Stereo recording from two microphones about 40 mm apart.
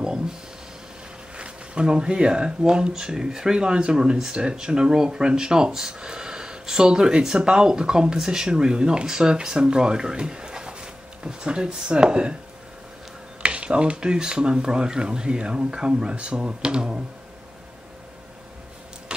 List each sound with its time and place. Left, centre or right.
1.3 s speech: right
13.4 s speech: right